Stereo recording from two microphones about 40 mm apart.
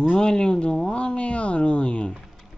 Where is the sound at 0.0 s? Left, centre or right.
Centre.